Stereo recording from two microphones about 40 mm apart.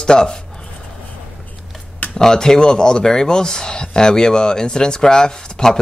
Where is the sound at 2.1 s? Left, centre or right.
Centre.